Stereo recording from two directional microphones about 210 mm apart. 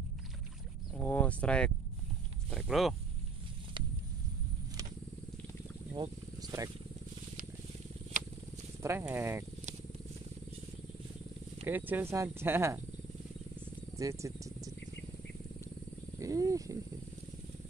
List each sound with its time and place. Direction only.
0.9 s speech: 5° left (ahead or behind)
5.9 s a sound: 15° right (ahead or behind)
8.8 s speech: 10° right (ahead or behind)
11.6 s speech: 10° right (ahead or behind)
13.9 s speech: 15° right (ahead or behind)
16.2 s speech: 15° right (ahead or behind)